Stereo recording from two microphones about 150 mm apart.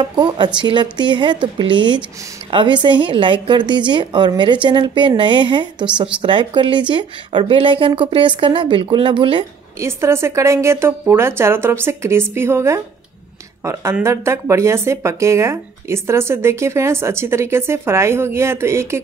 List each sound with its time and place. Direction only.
0.0 s a woman's voice: 30° right (ahead or behind)
9.8 s speech: 20° right (ahead or behind)
14.0 s speech: 20° right (ahead or behind)